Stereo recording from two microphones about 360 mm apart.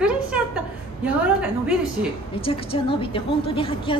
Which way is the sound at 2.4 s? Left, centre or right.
Centre.